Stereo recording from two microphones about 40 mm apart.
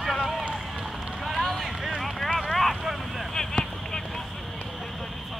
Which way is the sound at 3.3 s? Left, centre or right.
Centre.